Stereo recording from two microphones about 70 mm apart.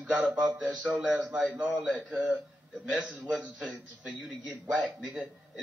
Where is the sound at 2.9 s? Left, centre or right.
Centre.